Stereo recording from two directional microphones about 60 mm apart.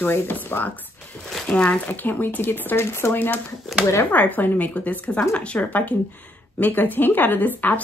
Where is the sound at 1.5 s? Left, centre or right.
Centre.